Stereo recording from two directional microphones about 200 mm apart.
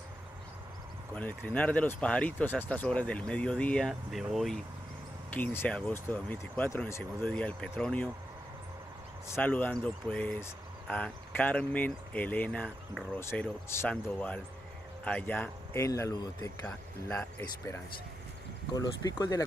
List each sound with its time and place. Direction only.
1.1 s speech: 10° left (ahead or behind)
5.3 s speech: 10° left (ahead or behind)
9.3 s speech: 10° left (ahead or behind)